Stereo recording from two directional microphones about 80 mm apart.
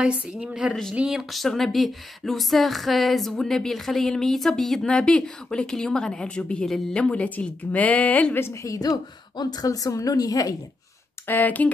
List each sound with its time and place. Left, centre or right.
0.0 s a woman's voice: centre
1.3 s speech: centre
8.6 s a woman's voice: left
11.2 s speech: left